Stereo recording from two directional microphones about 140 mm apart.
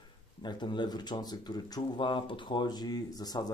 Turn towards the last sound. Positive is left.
turn(degrees=30)  # may be behind; listen again after turning